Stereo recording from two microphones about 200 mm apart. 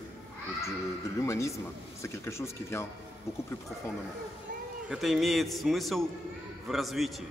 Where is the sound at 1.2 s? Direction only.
15° left (ahead or behind).